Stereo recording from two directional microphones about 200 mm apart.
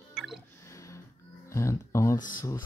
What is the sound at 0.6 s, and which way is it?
Music, 15° left (ahead or behind).